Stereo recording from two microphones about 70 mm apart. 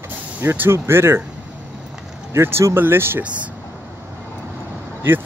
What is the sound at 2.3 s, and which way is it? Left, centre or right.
Speech, right.